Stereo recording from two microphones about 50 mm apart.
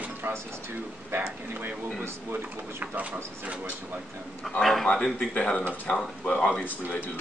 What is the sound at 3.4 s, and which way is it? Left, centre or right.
Speech, right.